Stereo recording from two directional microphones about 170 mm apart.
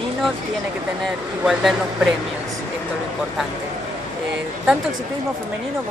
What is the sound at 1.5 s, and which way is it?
Speech, centre (ahead or behind).